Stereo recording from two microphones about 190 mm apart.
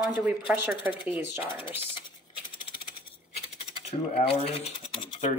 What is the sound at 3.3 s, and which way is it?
Scratch, 30° left (ahead or behind).